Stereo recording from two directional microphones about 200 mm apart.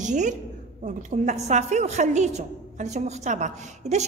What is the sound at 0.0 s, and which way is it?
A woman's voice, 35° right (ahead or behind).